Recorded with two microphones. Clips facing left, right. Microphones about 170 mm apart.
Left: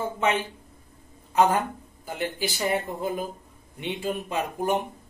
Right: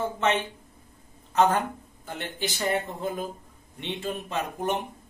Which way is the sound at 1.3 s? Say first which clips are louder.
Left 1 dB; 5° left (ahead or behind).